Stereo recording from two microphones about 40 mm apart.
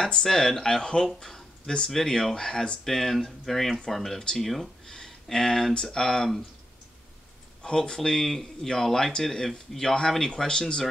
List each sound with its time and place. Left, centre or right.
0.0 s speech: centre
2.8 s speech: centre
4.8 s speech: centre
7.6 s speech: centre